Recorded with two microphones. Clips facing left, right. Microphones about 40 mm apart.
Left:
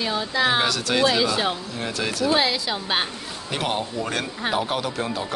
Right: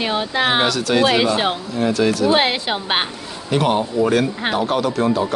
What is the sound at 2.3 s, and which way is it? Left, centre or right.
Speech, right.